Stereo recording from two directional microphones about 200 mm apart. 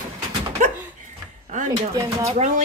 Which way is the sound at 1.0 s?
40° right (ahead or behind).